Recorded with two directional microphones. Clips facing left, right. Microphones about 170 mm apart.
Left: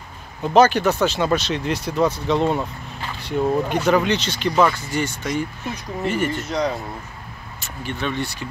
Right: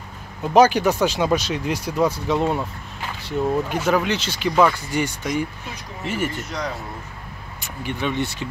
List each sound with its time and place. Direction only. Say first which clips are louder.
0.4 s speech: even; 10° right (ahead or behind)
7.6 s speech: right 1 dB; 15° right (ahead or behind)